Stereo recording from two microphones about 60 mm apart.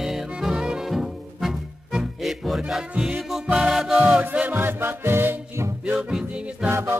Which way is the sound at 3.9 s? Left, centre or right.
Centre.